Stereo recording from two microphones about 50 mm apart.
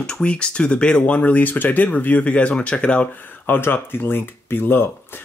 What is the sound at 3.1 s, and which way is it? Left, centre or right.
Speech, left.